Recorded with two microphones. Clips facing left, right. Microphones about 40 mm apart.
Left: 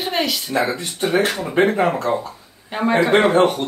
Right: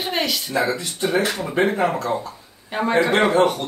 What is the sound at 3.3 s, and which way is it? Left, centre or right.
Speech, left.